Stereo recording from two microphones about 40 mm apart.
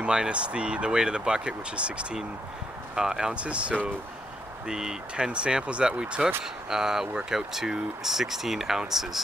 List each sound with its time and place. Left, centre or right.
0.0 s speech: right
3.0 s speech: centre
3.3 s speech: right
4.6 s speech: centre